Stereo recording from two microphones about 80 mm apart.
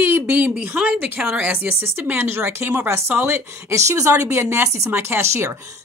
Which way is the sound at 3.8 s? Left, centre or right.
Right.